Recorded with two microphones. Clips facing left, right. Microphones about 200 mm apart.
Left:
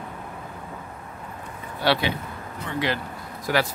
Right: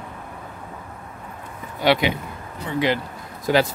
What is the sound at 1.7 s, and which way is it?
Speech, 15° right (ahead or behind).